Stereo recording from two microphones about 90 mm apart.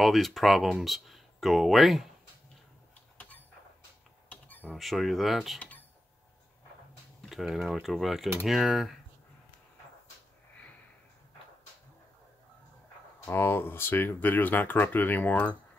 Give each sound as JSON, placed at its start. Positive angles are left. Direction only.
{"t": 0.0, "sound": "speech", "side_deg": 0}
{"t": 3.2, "sound": "a sound", "side_deg": 20}
{"t": 4.3, "sound": "cutlery", "side_deg": 20}
{"t": 4.7, "sound": "speech", "side_deg": 0}
{"t": 7.2, "sound": "speech", "side_deg": 0}
{"t": 13.2, "sound": "speech", "side_deg": 30}